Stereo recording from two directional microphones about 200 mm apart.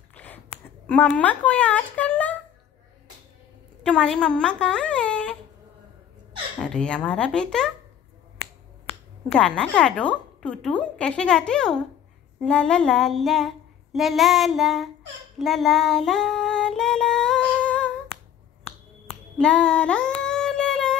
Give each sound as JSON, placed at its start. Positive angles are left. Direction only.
{"t": 0.1, "sound": "a sound", "side_deg": 10}
{"t": 0.8, "sound": "speech", "side_deg": 5}
{"t": 3.8, "sound": "speech", "side_deg": 5}
{"t": 6.6, "sound": "a woman's voice", "side_deg": 5}
{"t": 8.9, "sound": "finger snapping", "side_deg": 30}
{"t": 9.3, "sound": "a woman's voice", "side_deg": 5}
{"t": 15.3, "sound": "child singing", "side_deg": 0}
{"t": 19.0, "sound": "a sound", "side_deg": 5}